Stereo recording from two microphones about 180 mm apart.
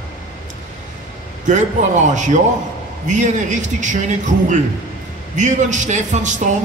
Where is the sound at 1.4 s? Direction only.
40° right (ahead or behind).